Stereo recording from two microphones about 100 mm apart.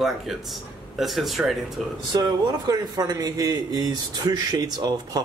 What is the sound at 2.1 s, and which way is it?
Speech, 45° right (ahead or behind).